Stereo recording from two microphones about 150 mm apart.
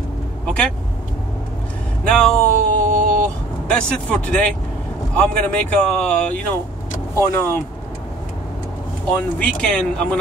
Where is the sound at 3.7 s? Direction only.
5° left (ahead or behind).